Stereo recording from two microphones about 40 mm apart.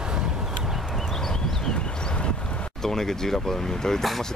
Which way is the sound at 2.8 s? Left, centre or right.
Centre.